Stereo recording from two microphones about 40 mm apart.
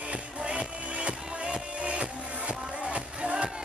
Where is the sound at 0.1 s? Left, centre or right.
Right.